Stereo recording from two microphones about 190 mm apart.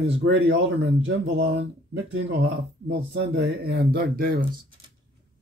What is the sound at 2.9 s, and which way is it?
Speech, 65° right (ahead or behind).